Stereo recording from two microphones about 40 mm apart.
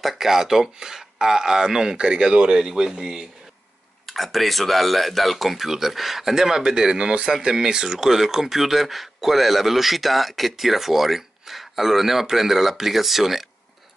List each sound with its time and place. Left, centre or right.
0.0 s speech: centre; by 2.7 s right
3.0 s speech: centre
4.0 s speech: centre